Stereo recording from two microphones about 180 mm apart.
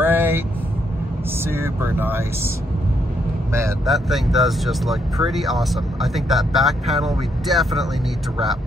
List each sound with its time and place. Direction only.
0.0 s vehicle: 10° right (ahead or behind)
1.4 s speech: 15° right (ahead or behind)
3.8 s speech: centre (ahead or behind)